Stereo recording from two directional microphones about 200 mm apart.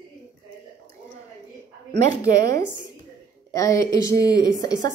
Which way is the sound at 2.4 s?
50° right (ahead or behind).